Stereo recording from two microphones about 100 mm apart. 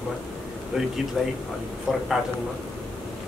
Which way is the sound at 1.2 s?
5° right (ahead or behind).